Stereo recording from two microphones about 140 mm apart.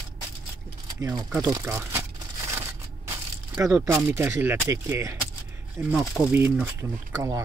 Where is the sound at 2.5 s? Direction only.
20° right (ahead or behind).